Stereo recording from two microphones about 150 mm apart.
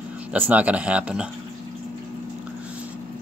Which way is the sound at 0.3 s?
10° right (ahead or behind).